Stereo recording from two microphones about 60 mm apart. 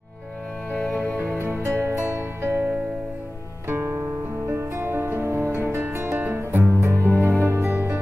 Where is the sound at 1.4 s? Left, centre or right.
Right.